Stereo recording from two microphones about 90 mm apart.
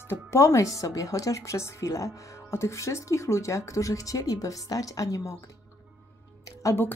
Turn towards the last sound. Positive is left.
turn(degrees=35)  # may be behind; listen again after turning